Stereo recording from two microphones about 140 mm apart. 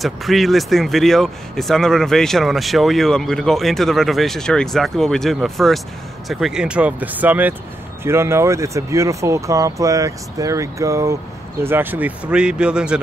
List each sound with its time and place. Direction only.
0.0 s speech: centre (ahead or behind)